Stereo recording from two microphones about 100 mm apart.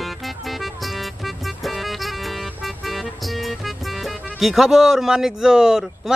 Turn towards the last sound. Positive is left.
turn(degrees=-5)  # may be behind; listen again after turning